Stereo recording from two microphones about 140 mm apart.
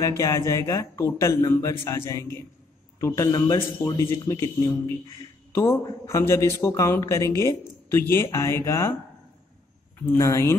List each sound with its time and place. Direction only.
0.2 s a man's voice: 20° left (ahead or behind)
10.1 s a man's voice: 25° left (ahead or behind)